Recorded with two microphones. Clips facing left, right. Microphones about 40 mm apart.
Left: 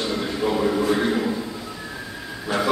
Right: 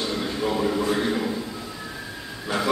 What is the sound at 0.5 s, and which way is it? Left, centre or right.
Speech, centre.